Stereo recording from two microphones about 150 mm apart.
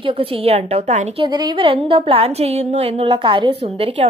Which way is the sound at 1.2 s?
30° right (ahead or behind).